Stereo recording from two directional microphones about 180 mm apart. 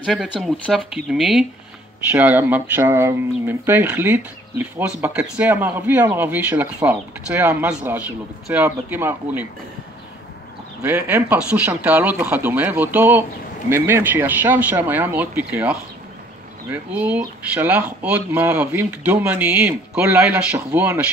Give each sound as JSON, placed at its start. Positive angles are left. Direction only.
{"t": 0.0, "sound": "speech", "side_deg": 0}
{"t": 10.8, "sound": "speech", "side_deg": -10}